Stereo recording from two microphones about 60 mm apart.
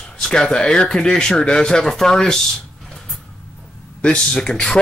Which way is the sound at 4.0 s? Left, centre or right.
Centre.